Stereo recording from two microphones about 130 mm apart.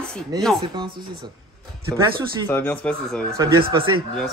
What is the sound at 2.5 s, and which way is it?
Speech, 15° left (ahead or behind).